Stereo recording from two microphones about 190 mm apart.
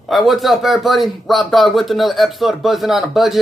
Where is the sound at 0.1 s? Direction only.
Centre (ahead or behind).